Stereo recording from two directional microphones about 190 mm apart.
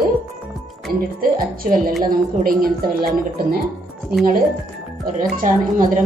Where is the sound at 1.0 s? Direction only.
50° right (ahead or behind).